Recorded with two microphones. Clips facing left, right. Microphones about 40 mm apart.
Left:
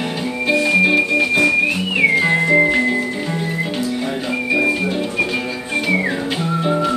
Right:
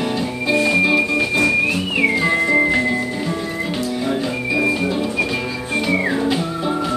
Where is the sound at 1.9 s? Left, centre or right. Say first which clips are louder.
Left 3 dB; centre.